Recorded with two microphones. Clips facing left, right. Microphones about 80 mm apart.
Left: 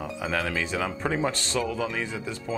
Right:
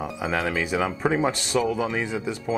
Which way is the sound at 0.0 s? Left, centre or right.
Centre.